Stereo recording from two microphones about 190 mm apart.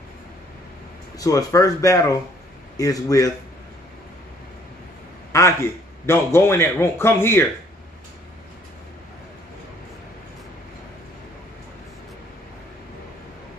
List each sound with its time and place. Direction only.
1.1 s a man's voice: 15° left (ahead or behind)
5.3 s a man's voice: 15° left (ahead or behind)